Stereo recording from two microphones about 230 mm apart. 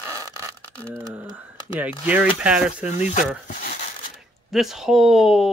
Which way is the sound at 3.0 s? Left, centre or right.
Left.